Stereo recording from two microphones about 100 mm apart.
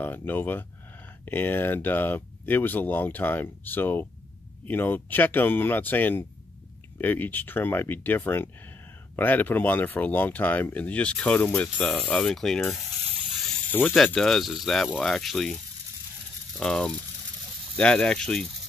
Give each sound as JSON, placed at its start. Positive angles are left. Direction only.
{"t": 0.0, "sound": "speech", "side_deg": 20}
{"t": 13.7, "sound": "speech", "side_deg": 20}
{"t": 13.9, "sound": "speech", "side_deg": 5}
{"t": 16.5, "sound": "speech", "side_deg": 5}